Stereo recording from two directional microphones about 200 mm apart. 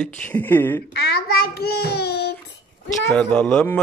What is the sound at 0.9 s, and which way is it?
Child singing, 55° left (ahead or behind).